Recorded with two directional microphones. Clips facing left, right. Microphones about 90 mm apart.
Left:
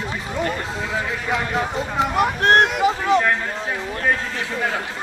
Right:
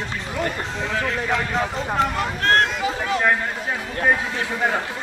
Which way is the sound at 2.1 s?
20° left (ahead or behind).